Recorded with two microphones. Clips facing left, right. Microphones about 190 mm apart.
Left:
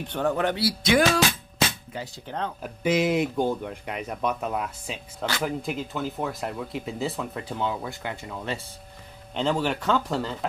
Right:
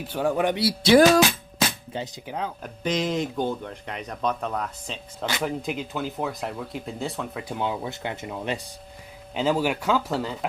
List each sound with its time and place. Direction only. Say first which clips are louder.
0.0 s speech: right 1 dB; 10° right (ahead or behind); by 2.2 s 25° right (ahead or behind)
2.2 s speech: left 2 dB; 10° right (ahead or behind)
2.6 s speech: left 4 dB; 5° left (ahead or behind)
7.4 s speech: right 2 dB; 15° right (ahead or behind)
9.3 s speech: right 2 dB; 5° right (ahead or behind)